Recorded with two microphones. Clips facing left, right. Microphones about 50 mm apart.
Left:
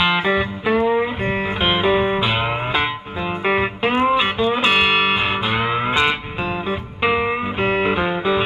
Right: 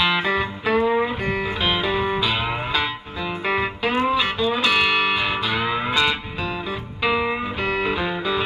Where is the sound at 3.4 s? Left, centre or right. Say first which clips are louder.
Left 4 dB; left.